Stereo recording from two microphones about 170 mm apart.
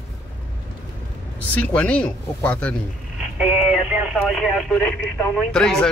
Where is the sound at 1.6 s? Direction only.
10° left (ahead or behind).